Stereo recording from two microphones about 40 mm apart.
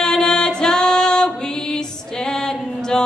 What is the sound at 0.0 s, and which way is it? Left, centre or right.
Music, centre.